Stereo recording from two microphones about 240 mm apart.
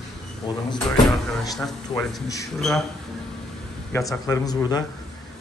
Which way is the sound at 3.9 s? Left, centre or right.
Centre.